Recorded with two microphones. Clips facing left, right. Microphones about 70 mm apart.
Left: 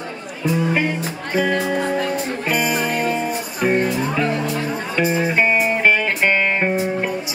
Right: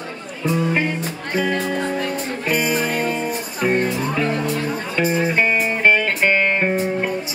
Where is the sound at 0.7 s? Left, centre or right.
Centre.